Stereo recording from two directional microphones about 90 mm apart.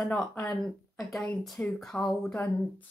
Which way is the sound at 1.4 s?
Centre (ahead or behind).